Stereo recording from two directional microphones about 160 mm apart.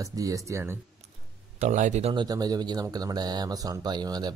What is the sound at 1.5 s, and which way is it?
Speech, 50° right (ahead or behind).